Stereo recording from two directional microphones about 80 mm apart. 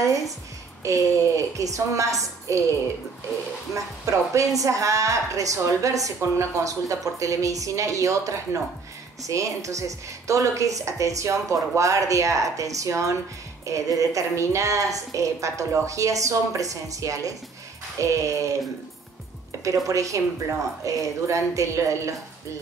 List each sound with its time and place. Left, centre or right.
0.8 s speech: right
3.7 s speech: right
19.6 s speech: right